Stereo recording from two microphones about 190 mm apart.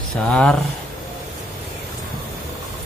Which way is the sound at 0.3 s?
5° left (ahead or behind).